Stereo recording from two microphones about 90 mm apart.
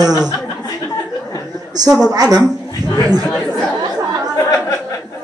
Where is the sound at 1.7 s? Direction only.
45° right (ahead or behind).